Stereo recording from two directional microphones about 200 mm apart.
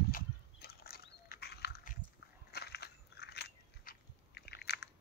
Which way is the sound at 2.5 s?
55° left (ahead or behind).